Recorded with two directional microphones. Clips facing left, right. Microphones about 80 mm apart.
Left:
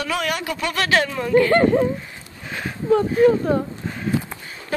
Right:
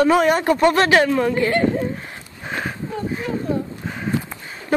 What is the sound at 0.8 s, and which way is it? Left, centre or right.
Speech, centre.